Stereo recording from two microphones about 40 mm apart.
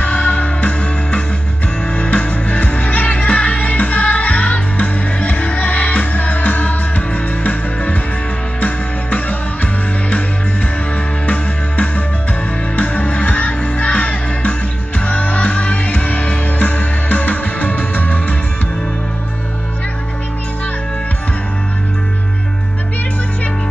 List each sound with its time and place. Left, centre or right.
0.0 s music: left
12.7 s music: left